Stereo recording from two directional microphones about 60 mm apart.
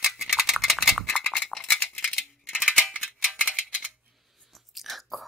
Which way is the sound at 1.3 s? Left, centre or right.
Centre.